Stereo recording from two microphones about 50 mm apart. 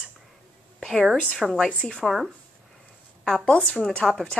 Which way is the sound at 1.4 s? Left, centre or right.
Centre.